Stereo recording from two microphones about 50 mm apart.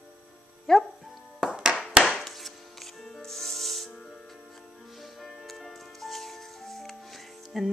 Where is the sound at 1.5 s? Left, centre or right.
Centre.